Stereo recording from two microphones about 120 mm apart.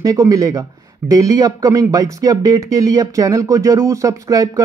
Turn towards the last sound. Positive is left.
turn(degrees=-30)  # may be behind; listen again after turning